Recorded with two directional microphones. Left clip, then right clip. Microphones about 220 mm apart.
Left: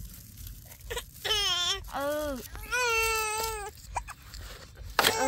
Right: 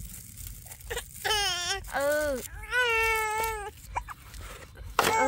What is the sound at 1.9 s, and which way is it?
Speech, 30° right (ahead or behind).